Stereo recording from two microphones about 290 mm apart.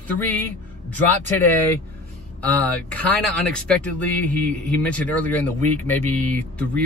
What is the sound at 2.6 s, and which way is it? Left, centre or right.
Speech, centre.